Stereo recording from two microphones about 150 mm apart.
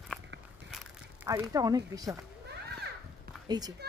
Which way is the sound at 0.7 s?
5° right (ahead or behind).